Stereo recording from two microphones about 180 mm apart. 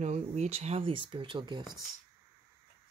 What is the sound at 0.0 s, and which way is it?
Speech, 40° right (ahead or behind).